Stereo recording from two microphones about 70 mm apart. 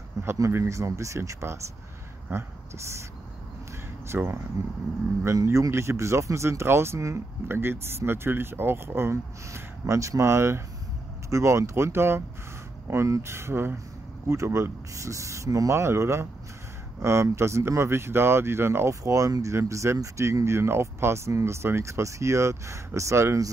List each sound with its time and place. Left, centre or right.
0.4 s speech: right
4.1 s speech: right
4.6 s speech: right